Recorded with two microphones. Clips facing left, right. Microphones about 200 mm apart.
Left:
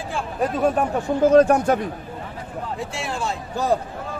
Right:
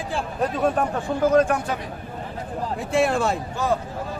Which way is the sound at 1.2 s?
40° left (ahead or behind).